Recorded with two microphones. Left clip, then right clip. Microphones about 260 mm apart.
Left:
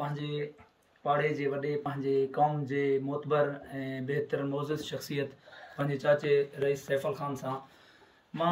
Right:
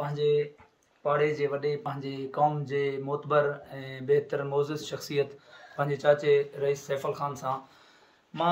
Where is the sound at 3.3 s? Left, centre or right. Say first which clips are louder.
Right 3 dB; centre.